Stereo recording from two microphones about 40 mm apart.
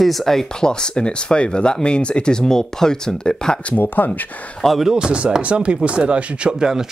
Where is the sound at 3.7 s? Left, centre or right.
Left.